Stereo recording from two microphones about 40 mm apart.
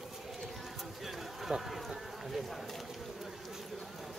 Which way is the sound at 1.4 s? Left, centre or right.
Centre.